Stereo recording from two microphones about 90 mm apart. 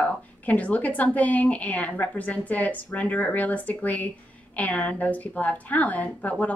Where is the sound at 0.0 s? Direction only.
15° left (ahead or behind).